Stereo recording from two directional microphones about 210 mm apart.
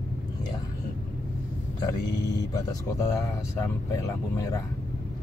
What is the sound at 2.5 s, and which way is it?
Speech, 15° left (ahead or behind).